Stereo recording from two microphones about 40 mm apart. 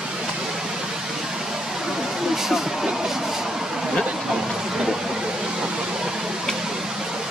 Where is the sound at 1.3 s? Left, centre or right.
Centre.